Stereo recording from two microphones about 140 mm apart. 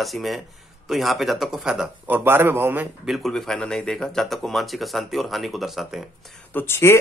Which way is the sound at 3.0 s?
Centre (ahead or behind).